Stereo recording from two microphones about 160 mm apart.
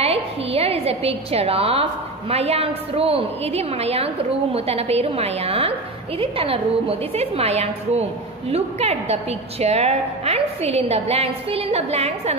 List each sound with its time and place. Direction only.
0.0 s a woman's voice: 40° right (ahead or behind)